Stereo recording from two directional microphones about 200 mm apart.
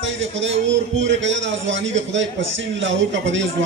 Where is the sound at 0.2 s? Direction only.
70° right (ahead or behind).